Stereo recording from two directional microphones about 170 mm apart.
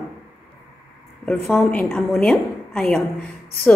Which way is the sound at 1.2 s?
10° left (ahead or behind).